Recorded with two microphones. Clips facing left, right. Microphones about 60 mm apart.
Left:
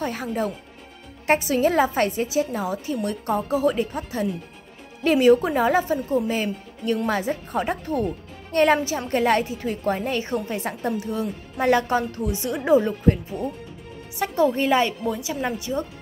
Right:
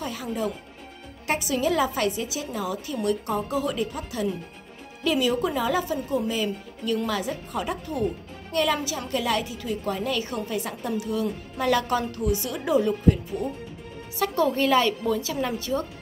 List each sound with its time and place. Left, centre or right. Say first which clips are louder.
0.0 s a woman's voice: left 3 dB; left; by 15.8 s centre